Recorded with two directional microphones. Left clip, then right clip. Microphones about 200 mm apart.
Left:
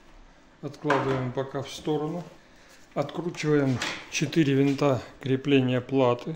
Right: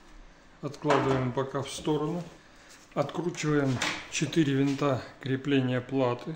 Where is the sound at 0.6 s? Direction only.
5° right (ahead or behind).